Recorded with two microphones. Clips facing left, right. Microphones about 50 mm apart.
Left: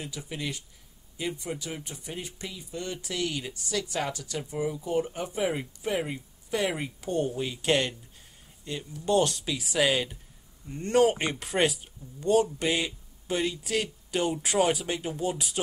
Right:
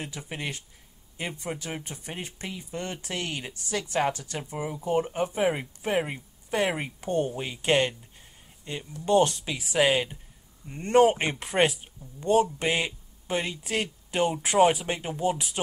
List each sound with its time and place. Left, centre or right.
0.0 s speech: right